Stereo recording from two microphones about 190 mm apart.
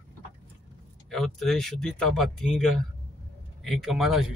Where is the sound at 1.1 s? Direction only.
Centre (ahead or behind).